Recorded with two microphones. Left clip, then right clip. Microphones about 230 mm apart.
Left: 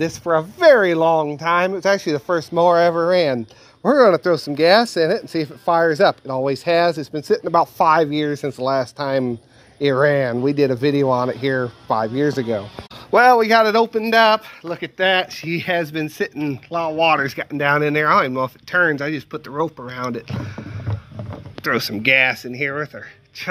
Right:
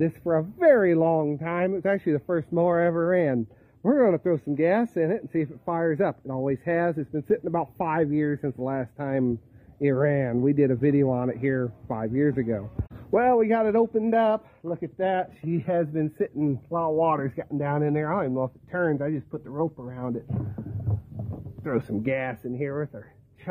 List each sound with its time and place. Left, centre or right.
0.0 s speech: centre
13.1 s speech: centre
19.5 s speech: centre
19.9 s speech: centre
21.6 s speech: centre